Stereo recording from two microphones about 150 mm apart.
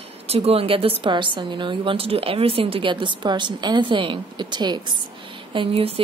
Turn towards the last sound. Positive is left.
turn(degrees=-40)  # may be behind; listen again after turning